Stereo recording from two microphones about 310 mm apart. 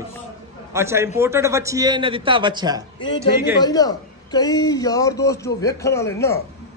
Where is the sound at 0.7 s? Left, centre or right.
Centre.